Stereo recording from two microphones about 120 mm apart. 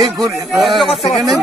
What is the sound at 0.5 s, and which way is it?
Speech, centre (ahead or behind).